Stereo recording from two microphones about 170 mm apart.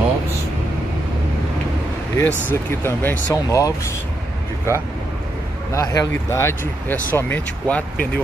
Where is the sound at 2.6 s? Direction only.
15° left (ahead or behind).